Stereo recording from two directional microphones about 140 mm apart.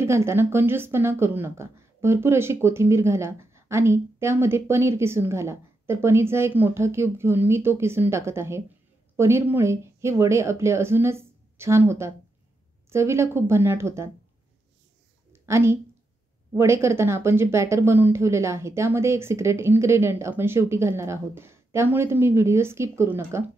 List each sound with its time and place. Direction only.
0.0 s a woman's voice: 20° right (ahead or behind)
15.4 s a woman's voice: 20° right (ahead or behind)